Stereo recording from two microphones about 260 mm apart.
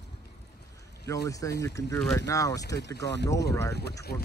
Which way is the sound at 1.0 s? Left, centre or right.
Centre.